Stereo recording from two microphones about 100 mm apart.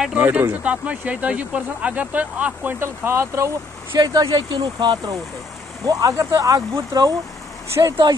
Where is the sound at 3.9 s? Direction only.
40° right (ahead or behind).